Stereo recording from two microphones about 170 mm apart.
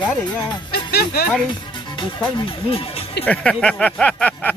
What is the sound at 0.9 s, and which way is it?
Speech, 65° left (ahead or behind).